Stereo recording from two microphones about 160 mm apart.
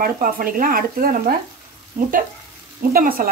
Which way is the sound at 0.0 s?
60° right (ahead or behind).